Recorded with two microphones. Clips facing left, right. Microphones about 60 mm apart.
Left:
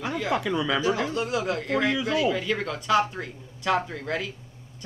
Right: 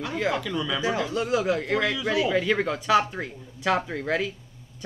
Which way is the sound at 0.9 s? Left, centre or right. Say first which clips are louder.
Right 1 dB; left.